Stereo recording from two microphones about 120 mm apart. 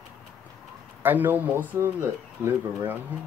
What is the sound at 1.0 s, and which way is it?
Speech, 15° right (ahead or behind).